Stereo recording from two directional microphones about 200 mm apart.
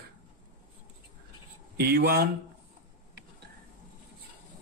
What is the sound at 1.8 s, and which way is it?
Speech, 55° right (ahead or behind).